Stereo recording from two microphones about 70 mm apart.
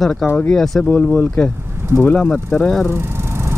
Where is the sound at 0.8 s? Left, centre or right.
Left.